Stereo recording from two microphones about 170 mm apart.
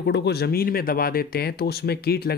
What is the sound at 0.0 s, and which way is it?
Speech, 85° left.